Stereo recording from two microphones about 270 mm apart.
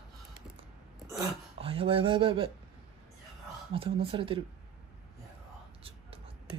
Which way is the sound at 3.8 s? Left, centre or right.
Centre.